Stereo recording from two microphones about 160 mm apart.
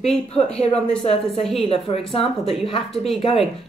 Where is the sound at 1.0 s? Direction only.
40° left (ahead or behind).